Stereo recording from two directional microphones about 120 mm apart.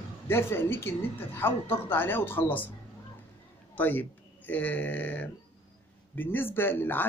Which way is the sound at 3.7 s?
15° left (ahead or behind).